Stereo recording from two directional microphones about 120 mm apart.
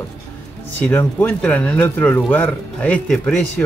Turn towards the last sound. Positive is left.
turn(degrees=10)  # may be behind; listen again after turning